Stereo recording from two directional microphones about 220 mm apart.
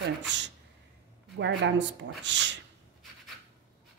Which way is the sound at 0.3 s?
55° right (ahead or behind).